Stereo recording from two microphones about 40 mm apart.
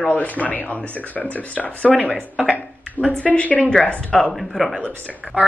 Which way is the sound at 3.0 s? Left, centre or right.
Left.